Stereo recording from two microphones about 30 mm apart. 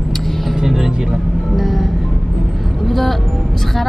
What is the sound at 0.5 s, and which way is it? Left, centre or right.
Speech, centre.